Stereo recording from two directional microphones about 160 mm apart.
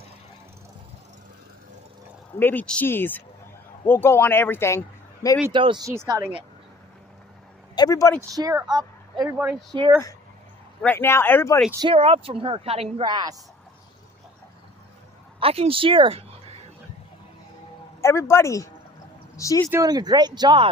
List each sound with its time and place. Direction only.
2.3 s speech: 10° left (ahead or behind)
5.5 s a woman's voice: 30° right (ahead or behind)
5.9 s speech: 20° right (ahead or behind)
7.7 s speech: 25° left (ahead or behind)
8.2 s speech: 20° right (ahead or behind)
9.4 s speech: 5° right (ahead or behind)
9.7 s speech: 25° right (ahead or behind)
10.8 s speech: 15° left (ahead or behind)
11.8 s a woman's voice: 35° right (ahead or behind)
15.4 s speech: 35° right (ahead or behind)
18.0 s speech: 15° left (ahead or behind)
19.7 s speech: 25° right (ahead or behind)